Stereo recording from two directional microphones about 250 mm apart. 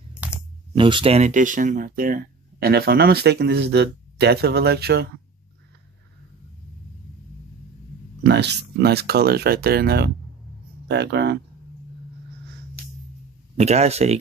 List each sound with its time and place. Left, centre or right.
0.2 s coin: centre
0.7 s speech: centre; by 5.0 s right
8.2 s speech: right
13.6 s speech: right